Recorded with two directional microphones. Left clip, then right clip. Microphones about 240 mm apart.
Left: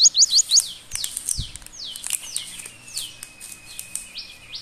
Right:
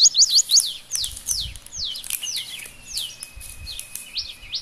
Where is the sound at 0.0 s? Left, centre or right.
Centre.